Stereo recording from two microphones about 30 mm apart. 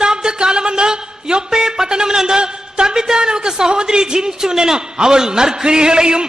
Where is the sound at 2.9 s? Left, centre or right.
Right.